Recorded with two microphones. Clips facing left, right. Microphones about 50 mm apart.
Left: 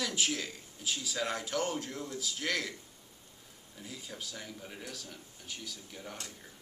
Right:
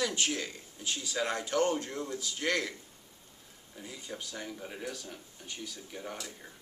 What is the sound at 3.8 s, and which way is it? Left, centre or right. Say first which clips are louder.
Speech: right 2 dB; centre.